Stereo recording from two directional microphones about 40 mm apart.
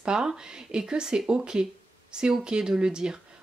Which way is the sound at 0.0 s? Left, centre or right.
Centre.